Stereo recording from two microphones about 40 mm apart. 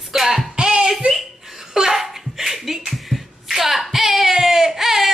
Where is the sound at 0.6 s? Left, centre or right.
Centre.